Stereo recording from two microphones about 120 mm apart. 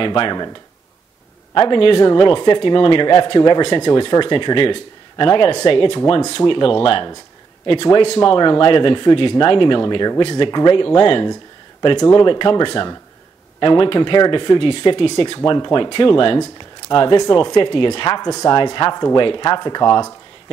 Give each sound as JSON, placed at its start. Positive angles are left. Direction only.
{"t": 0.0, "sound": "speech", "side_deg": 40}
{"t": 1.5, "sound": "speech", "side_deg": 45}
{"t": 15.3, "sound": "speech", "side_deg": 35}